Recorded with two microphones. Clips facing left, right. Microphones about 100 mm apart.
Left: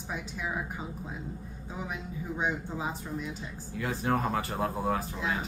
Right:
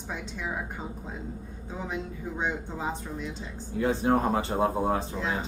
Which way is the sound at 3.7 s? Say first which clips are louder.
Right 5 dB; 25° right (ahead or behind).